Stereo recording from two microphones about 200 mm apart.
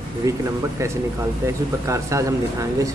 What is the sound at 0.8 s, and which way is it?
Speech, 15° right (ahead or behind).